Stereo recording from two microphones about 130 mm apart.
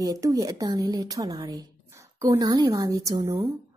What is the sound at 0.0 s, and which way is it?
A woman's voice, 25° right (ahead or behind).